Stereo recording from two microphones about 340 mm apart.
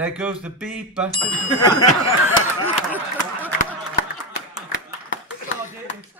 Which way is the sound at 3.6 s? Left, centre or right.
Left.